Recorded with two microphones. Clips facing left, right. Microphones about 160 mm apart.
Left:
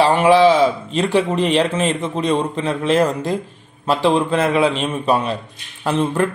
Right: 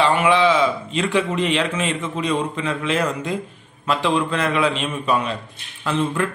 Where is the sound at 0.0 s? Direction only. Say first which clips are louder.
Left 5 dB; 35° left (ahead or behind).